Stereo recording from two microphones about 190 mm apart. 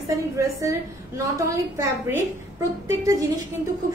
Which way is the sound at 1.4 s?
15° right (ahead or behind).